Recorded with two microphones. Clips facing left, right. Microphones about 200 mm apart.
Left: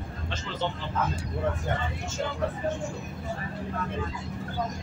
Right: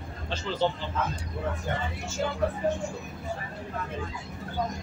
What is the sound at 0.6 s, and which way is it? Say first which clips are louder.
Speech: right 5 dB; 35° right (ahead or behind).